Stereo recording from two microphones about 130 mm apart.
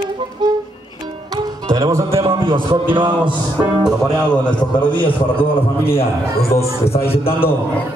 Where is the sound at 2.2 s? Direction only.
40° right (ahead or behind).